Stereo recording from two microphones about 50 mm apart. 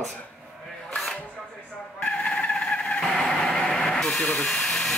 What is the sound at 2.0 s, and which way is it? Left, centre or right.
Vehicle, centre.